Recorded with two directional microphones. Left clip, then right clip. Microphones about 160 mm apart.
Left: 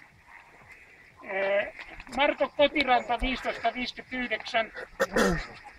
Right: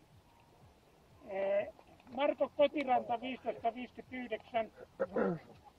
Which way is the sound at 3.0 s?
40° left (ahead or behind).